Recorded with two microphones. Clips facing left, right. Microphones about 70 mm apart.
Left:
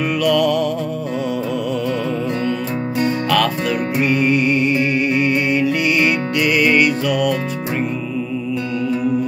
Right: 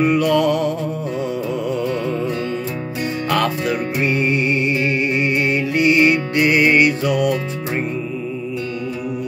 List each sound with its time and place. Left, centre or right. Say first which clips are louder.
0.0 s music: right 1 dB; right
3.3 s music: left 1 dB; right